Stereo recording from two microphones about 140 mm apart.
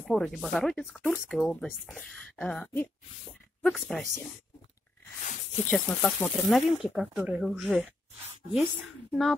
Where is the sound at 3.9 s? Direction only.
5° left (ahead or behind).